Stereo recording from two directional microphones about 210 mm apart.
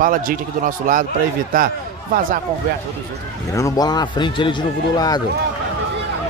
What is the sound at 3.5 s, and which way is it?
A man's voice, 15° left (ahead or behind).